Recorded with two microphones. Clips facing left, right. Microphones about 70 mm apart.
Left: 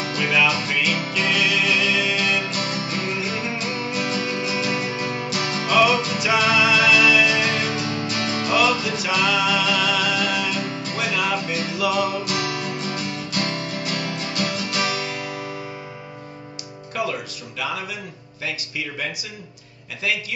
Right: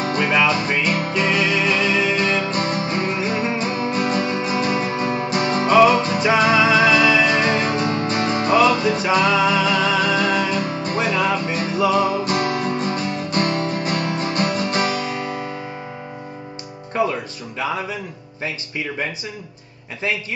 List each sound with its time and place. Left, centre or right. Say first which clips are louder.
0.0 s music: right 3 dB; right
16.9 s music: right 5 dB; right